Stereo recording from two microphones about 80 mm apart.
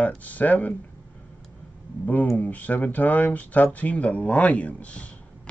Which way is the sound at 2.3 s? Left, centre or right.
Centre.